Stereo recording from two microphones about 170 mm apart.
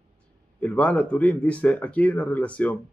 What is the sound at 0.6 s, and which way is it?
Speech, 10° left (ahead or behind).